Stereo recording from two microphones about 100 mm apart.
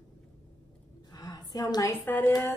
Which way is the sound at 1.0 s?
40° left (ahead or behind).